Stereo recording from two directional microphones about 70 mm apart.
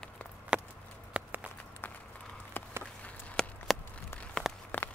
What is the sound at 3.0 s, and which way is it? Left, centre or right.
Walk, centre.